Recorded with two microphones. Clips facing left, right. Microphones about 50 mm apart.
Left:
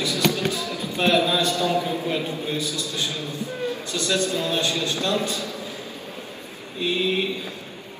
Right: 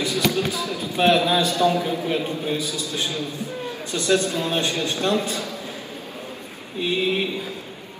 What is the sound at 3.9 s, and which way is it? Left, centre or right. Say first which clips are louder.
A man's voice: right 5 dB; right.